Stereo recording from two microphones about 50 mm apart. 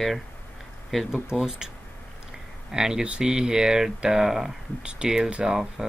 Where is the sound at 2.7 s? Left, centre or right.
Centre.